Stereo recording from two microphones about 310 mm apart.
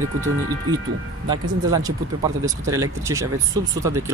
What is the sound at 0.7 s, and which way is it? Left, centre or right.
Speech, centre.